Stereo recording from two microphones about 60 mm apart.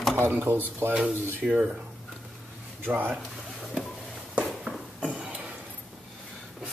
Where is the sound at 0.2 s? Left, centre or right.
Right.